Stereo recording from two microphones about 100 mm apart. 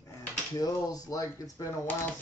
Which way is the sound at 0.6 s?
40° left (ahead or behind).